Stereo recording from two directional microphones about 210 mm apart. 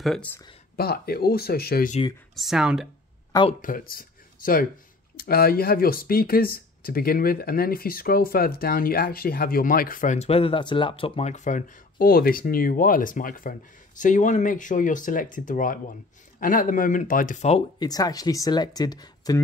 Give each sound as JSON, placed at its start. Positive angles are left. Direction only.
{"t": 0.0, "sound": "speech", "side_deg": 5}
{"t": 0.7, "sound": "speech", "side_deg": 45}
{"t": 2.3, "sound": "speech", "side_deg": 0}
{"t": 3.6, "sound": "speech", "side_deg": 40}
{"t": 17.7, "sound": "speech", "side_deg": 20}